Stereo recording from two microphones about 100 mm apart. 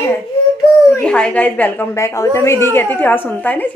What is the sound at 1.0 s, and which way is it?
Speech, 10° left (ahead or behind).